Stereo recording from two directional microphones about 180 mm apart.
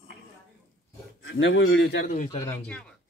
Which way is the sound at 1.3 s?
90° left.